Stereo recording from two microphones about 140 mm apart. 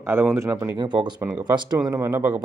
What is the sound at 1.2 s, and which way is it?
Speech, 10° right (ahead or behind).